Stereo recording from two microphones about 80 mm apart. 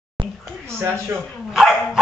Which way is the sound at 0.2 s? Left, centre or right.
Right.